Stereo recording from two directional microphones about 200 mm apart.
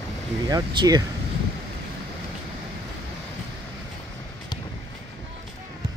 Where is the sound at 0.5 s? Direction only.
20° right (ahead or behind).